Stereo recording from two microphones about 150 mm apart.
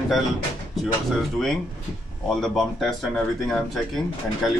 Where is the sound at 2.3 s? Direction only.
5° left (ahead or behind).